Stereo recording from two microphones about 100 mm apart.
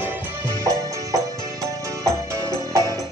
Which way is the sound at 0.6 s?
30° right (ahead or behind).